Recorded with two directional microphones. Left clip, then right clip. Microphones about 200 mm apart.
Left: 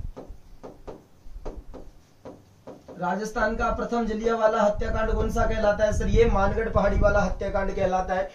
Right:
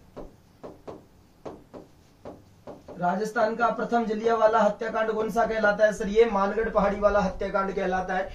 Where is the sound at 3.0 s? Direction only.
5° right (ahead or behind).